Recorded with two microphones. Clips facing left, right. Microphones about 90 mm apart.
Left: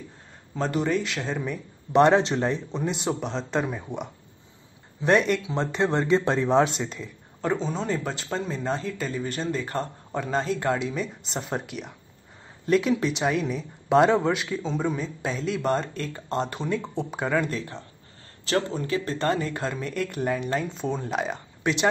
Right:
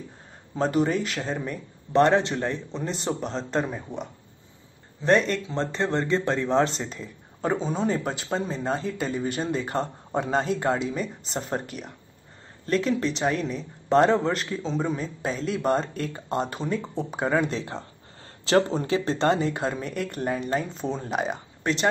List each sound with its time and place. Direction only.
0.7 s speech: 5° right (ahead or behind)
1.9 s speech: 15° left (ahead or behind)
5.0 s speech: 10° left (ahead or behind)
6.8 s speech: centre (ahead or behind)
17.5 s speech: 25° right (ahead or behind)
19.5 s speech: 10° right (ahead or behind)